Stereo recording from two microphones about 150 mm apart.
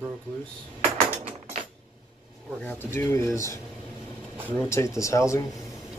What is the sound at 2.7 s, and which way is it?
Speech, 15° left (ahead or behind).